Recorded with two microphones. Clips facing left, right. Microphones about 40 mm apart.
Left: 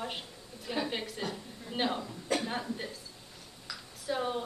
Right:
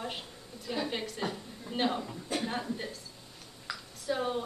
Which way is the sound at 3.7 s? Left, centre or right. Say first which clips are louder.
Right 4 dB; right.